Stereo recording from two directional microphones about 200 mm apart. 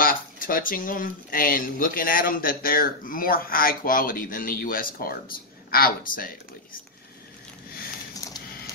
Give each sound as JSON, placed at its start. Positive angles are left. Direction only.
{"t": 0.0, "sound": "speech", "side_deg": 45}